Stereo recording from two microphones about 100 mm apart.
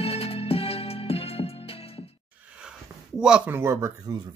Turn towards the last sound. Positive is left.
turn(degrees=-25)  # may be behind; listen again after turning